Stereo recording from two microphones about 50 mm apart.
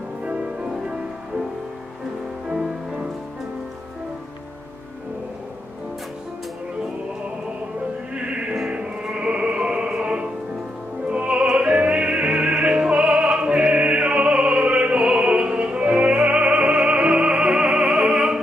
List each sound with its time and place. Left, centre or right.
0.2 s music: right
2.5 s music: centre
8.1 s music: right